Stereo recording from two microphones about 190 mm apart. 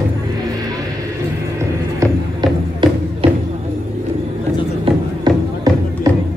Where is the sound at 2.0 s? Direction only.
25° right (ahead or behind).